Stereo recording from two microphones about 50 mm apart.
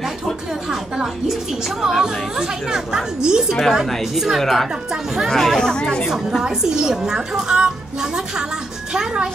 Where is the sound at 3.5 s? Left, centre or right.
Centre.